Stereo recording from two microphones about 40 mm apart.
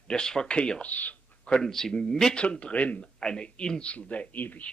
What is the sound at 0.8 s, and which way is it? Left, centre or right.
Speech, left.